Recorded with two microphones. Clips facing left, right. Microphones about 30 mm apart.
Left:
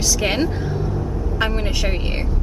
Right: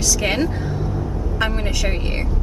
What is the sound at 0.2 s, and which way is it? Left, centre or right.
Speech, centre.